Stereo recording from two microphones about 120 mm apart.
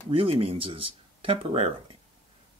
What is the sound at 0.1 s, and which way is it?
Speech, 50° right (ahead or behind).